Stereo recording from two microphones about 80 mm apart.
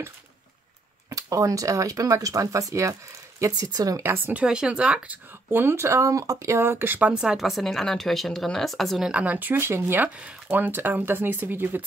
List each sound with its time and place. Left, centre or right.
1.1 s speech: right
4.0 s speech: right
4.4 s speech: centre; by 7.0 s right
7.0 s a woman's voice: centre
9.1 s speech: centre
10.0 s speech: centre